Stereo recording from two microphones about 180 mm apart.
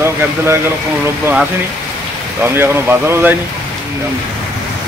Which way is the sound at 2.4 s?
10° right (ahead or behind).